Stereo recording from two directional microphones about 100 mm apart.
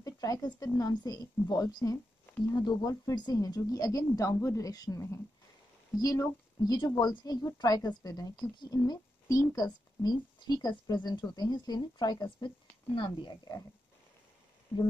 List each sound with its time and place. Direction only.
0.0 s a sound: 40° left (ahead or behind)
0.7 s a woman's voice: 40° left (ahead or behind)
9.4 s speech: 30° left (ahead or behind)
9.7 s speech: 45° left (ahead or behind)
12.9 s speech: 60° left (ahead or behind)